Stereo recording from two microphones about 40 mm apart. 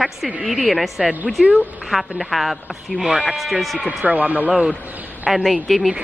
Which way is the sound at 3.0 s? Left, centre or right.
Centre.